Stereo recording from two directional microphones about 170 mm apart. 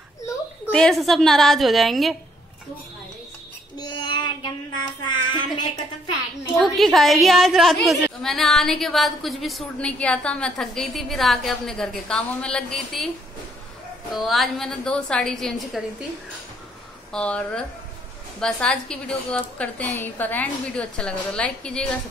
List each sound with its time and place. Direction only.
0.7 s a woman's voice: 5° left (ahead or behind)
3.7 s child singing: 25° left (ahead or behind)
6.6 s a woman's voice: centre (ahead or behind)
14.1 s a woman's voice: centre (ahead or behind)
17.1 s a woman's voice: 5° left (ahead or behind)